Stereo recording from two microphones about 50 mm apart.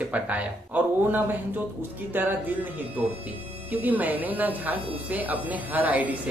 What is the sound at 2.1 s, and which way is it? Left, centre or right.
Speech, right.